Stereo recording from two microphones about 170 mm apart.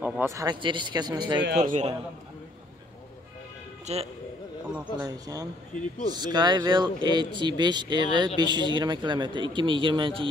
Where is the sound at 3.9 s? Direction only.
40° right (ahead or behind).